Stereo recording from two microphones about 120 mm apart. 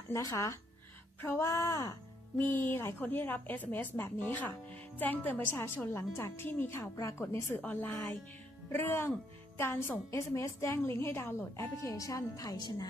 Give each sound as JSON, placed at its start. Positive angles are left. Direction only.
{"t": 0.1, "sound": "a woman's voice", "side_deg": 25}